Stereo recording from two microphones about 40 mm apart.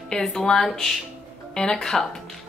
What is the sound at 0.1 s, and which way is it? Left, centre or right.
A woman's voice, centre.